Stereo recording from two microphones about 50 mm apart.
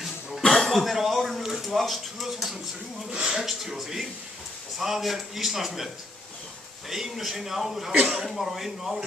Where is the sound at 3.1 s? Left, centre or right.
Centre.